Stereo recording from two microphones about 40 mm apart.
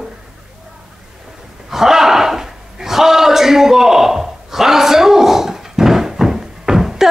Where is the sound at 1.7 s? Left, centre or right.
Centre.